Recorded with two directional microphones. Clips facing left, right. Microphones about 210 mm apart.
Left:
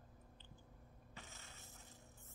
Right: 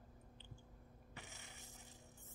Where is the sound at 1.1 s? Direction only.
15° right (ahead or behind).